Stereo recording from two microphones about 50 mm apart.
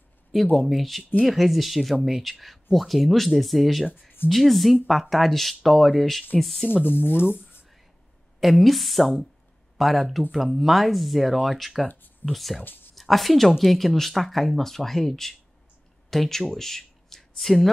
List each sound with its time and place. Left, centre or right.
0.3 s speech: centre
6.8 s speech: left
8.4 s speech: centre
12.6 s speech: left
12.9 s speech: centre